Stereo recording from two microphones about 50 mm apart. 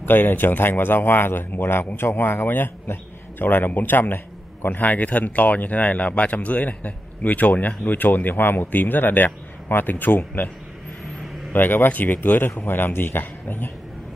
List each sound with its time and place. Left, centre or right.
0.0 s a man's voice: left
11.5 s a man's voice: left